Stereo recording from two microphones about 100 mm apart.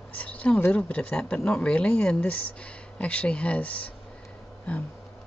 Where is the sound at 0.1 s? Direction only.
15° left (ahead or behind).